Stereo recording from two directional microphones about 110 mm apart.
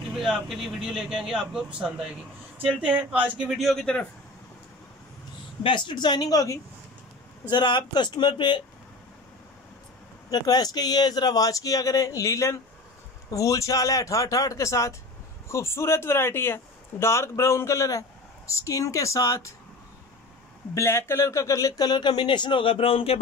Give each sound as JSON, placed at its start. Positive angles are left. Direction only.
{"t": 0.1, "sound": "speech", "side_deg": -5}
{"t": 5.9, "sound": "speech", "side_deg": 40}
{"t": 7.4, "sound": "speech", "side_deg": 45}
{"t": 10.3, "sound": "speech", "side_deg": 40}
{"t": 20.7, "sound": "speech", "side_deg": 25}